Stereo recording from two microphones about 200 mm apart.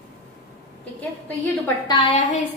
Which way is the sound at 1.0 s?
10° left (ahead or behind).